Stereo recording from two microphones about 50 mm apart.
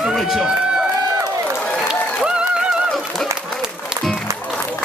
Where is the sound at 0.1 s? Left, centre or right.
Centre.